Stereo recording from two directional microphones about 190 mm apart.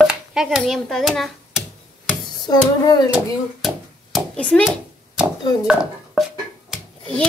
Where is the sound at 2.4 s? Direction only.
20° left (ahead or behind).